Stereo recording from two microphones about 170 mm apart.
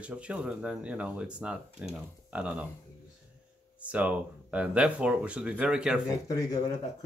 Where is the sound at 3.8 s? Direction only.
10° right (ahead or behind).